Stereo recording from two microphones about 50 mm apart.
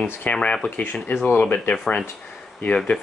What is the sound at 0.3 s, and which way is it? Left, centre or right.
Speech, centre.